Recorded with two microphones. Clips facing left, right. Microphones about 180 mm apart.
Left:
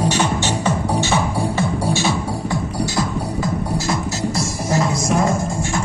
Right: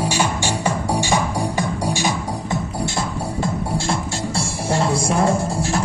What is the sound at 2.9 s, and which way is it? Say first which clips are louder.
Music: left 2 dB; 30° right (ahead or behind).